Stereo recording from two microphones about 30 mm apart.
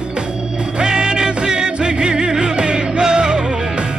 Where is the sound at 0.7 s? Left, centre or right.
Right.